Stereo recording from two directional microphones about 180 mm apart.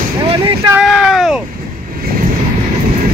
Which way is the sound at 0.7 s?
Centre (ahead or behind).